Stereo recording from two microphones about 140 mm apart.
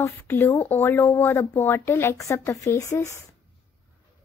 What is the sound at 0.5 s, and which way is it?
Speech, 50° left (ahead or behind).